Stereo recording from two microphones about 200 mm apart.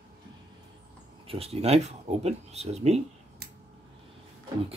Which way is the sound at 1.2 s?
30° right (ahead or behind).